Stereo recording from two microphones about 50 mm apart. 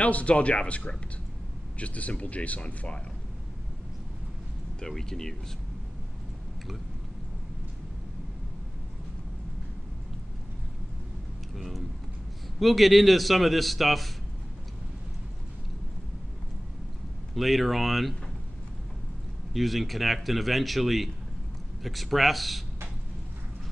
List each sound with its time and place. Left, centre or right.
0.0 s speech: left
4.7 s speech: centre
11.5 s speech: centre
17.4 s speech: centre
19.5 s speech: centre